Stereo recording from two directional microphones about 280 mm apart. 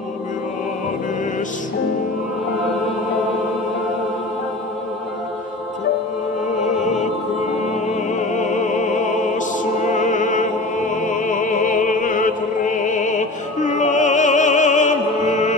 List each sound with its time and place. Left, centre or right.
6.6 s opera: left
7.9 s music: left
11.0 s opera: left